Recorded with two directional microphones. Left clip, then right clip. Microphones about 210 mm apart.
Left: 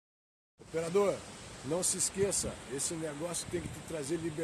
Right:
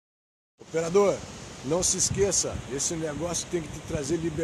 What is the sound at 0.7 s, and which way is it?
Speech, 5° right (ahead or behind).